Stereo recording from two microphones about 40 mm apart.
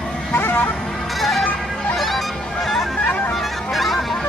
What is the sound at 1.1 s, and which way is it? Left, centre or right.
Music, centre.